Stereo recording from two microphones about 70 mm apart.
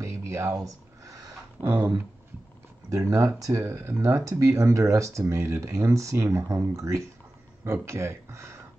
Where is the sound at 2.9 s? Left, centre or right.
Right.